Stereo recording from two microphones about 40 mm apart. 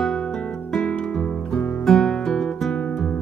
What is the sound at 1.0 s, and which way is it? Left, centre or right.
Music, left.